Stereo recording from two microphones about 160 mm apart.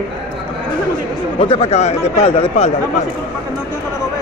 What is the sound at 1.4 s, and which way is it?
Speech, 35° left (ahead or behind).